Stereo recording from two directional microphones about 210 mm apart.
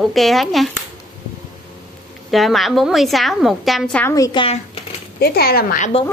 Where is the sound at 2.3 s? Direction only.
Centre (ahead or behind).